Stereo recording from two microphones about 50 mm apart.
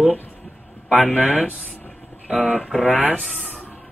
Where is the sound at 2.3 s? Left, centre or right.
Left.